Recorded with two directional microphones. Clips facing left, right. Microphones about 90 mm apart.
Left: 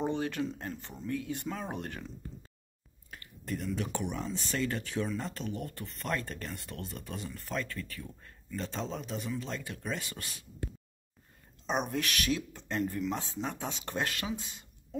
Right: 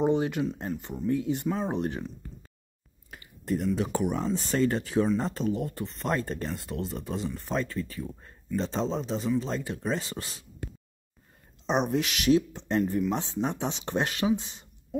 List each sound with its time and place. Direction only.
0.0 s a sound: 20° right (ahead or behind)
0.7 s speech: 15° right (ahead or behind)
3.1 s a sound: 25° right (ahead or behind)
3.7 s speech: 35° right (ahead or behind)
4.4 s speech: 30° right (ahead or behind)
5.5 s speech: 25° right (ahead or behind)
11.6 s speech: 25° right (ahead or behind)